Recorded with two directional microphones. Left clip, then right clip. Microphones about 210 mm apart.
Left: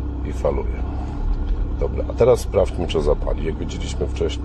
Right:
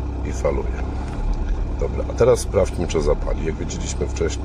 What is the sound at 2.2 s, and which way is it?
Speech, 5° right (ahead or behind).